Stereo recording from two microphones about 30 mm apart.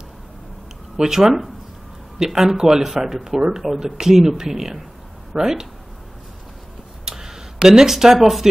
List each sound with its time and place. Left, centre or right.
0.9 s speech: centre
7.1 s a sound: centre
7.6 s speech: centre